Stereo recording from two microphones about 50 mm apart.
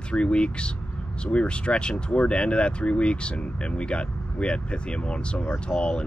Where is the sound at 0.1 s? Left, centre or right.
Left.